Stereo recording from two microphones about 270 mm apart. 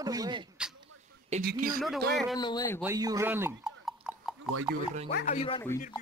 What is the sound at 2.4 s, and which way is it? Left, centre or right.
Speech, centre.